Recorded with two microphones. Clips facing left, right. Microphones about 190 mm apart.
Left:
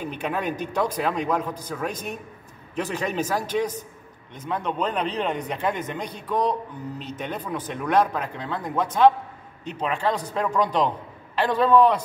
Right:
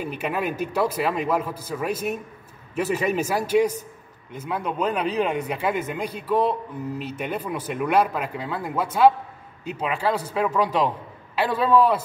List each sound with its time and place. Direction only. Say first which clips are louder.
0.0 s speech: right 1 dB; 5° right (ahead or behind)